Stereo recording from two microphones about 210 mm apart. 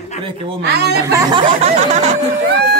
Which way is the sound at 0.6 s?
50° right (ahead or behind).